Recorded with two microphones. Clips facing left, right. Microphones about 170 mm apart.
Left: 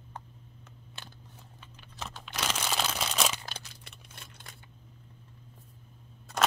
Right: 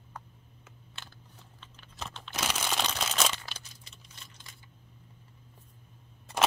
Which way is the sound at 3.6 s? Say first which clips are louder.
Left 3 dB; 65° left (ahead or behind).